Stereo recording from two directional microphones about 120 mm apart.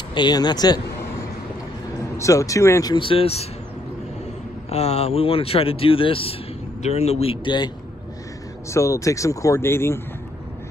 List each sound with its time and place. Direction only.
0.1 s speech: 35° left (ahead or behind)
2.1 s speech: 25° left (ahead or behind)
2.9 s speech: 50° left (ahead or behind)
4.6 s speech: 60° left (ahead or behind)
6.8 s a man's voice: 65° left (ahead or behind); by 7.7 s 40° left (ahead or behind)
8.6 s speech: 25° left (ahead or behind)